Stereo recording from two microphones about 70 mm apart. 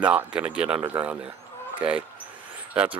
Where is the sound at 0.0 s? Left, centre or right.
Centre.